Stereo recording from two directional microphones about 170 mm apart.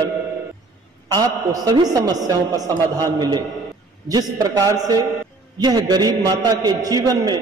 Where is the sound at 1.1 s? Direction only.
25° right (ahead or behind).